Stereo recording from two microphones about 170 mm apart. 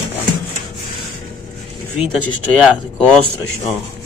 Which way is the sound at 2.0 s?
Centre (ahead or behind).